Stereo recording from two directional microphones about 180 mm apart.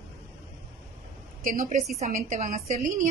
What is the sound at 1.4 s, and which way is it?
A woman's voice, 45° right (ahead or behind).